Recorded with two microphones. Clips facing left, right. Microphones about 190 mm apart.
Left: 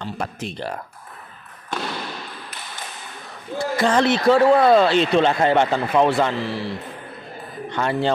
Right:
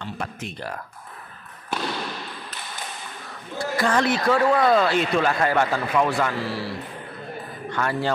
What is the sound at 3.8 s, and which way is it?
Speech, 25° left (ahead or behind).